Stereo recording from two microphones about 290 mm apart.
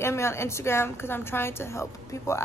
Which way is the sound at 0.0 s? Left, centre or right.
Centre.